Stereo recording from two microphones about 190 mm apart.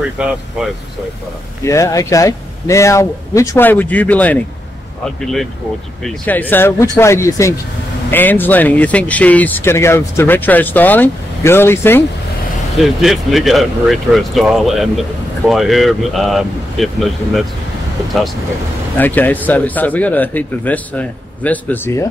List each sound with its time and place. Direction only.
0.2 s speech: 5° right (ahead or behind)
1.6 s speech: 15° left (ahead or behind)
12.7 s speech: centre (ahead or behind)
18.9 s speech: 10° left (ahead or behind)